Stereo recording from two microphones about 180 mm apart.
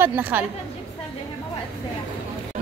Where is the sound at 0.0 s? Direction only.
10° right (ahead or behind).